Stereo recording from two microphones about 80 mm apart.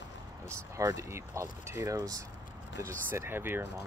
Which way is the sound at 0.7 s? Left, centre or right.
Right.